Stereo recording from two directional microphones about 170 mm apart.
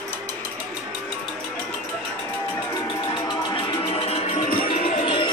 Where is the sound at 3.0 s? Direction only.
25° left (ahead or behind); by 5.1 s 40° left (ahead or behind).